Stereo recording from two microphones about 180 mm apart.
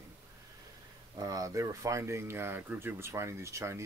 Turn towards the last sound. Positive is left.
turn(degrees=-15)  # may be behind; listen again after turning